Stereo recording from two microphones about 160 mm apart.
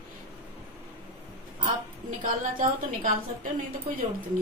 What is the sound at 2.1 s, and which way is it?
A woman's voice, 55° right (ahead or behind).